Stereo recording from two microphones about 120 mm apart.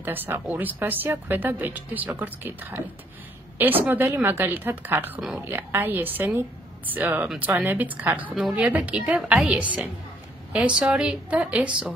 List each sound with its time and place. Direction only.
0.0 s speech: 15° right (ahead or behind)